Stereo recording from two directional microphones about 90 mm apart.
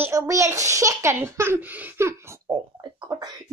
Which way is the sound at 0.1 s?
35° right (ahead or behind).